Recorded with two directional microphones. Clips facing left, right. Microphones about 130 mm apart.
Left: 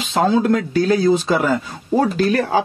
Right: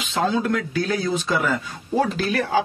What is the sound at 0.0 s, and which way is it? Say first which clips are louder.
Speech: left 6 dB; 35° left (ahead or behind).